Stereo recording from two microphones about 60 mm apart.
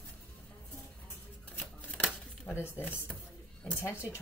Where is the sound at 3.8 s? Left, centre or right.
Left.